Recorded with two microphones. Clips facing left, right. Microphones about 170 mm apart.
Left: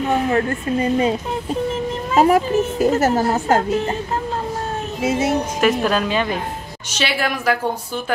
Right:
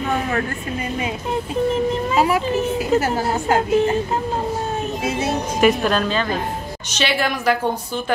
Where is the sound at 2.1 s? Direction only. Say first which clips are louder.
Left 6 dB; 45° left (ahead or behind).